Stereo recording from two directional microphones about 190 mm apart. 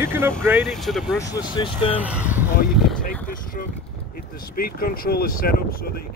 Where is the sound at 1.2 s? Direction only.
20° left (ahead or behind).